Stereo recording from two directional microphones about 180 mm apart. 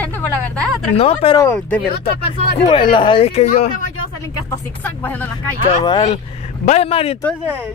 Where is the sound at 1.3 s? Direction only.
10° left (ahead or behind).